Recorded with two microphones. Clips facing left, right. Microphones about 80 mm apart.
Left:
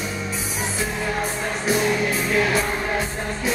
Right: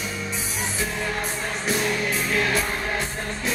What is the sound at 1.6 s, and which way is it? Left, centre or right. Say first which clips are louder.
Music: left 4 dB; centre.